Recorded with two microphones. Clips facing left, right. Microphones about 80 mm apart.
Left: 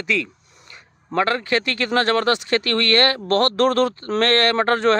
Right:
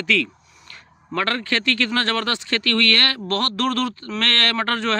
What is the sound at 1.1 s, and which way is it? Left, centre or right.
Speech, centre.